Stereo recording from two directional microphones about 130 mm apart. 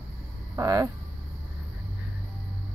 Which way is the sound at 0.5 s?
25° right (ahead or behind).